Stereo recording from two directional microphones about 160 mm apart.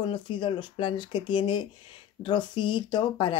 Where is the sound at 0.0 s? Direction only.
30° left (ahead or behind).